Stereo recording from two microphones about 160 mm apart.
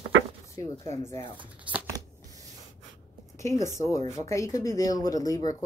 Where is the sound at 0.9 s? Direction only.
20° left (ahead or behind).